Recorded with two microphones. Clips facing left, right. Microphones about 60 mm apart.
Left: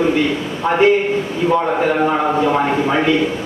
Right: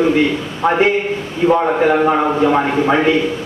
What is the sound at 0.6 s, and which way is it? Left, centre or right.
Speech, right.